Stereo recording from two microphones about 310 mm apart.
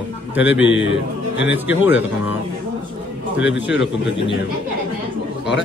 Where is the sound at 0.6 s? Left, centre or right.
Left.